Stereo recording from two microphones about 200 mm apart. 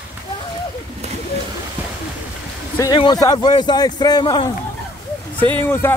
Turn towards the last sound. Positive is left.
turn(degrees=10)  # may be behind; listen again after turning